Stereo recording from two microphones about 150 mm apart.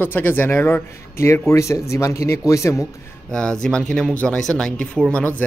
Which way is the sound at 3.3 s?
5° left (ahead or behind).